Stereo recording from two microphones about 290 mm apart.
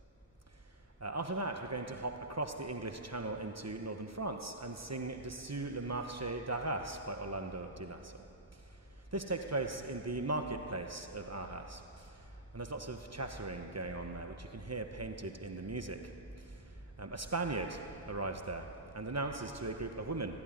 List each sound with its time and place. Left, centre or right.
1.0 s a man's voice: right
17.0 s a man's voice: right